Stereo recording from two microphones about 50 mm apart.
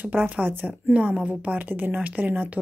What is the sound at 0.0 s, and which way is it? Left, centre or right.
A woman's voice, right.